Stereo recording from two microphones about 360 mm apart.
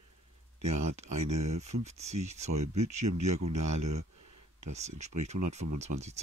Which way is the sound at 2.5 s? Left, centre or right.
Right.